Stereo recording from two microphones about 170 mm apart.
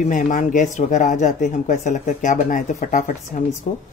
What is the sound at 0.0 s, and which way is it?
Speech, 50° left (ahead or behind).